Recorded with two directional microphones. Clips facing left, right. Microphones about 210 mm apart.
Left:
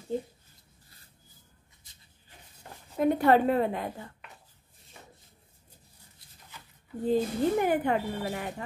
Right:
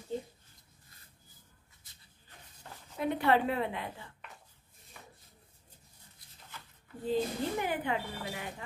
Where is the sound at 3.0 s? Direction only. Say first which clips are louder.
Left 6 dB; 45° left (ahead or behind).